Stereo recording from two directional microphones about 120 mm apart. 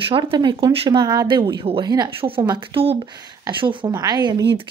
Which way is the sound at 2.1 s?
45° right (ahead or behind).